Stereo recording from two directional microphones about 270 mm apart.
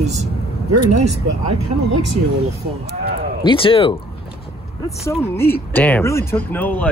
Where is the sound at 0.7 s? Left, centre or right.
Right.